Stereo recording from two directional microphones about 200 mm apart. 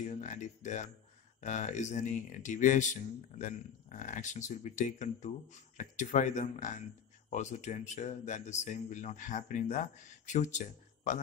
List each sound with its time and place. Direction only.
0.2 s speech: 35° left (ahead or behind)